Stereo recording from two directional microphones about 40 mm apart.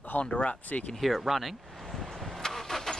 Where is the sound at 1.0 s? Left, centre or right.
Centre.